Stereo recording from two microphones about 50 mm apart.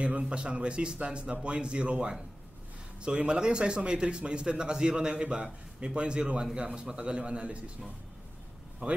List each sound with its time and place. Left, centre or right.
0.0 s a man's voice: right
8.8 s speech: centre